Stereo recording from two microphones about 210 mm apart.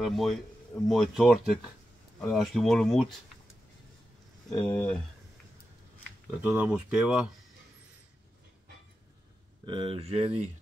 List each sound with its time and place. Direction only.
0.0 s speech: centre (ahead or behind)
4.5 s speech: 5° left (ahead or behind)
6.4 s speech: 10° right (ahead or behind)
9.7 s speech: 25° right (ahead or behind)